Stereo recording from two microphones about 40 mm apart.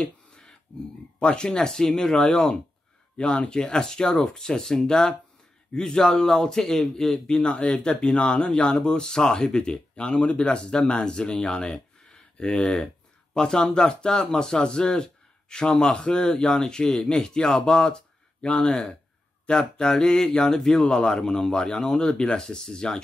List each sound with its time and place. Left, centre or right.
0.0 s finger snapping: centre
1.2 s speech: left
7.4 s speech: left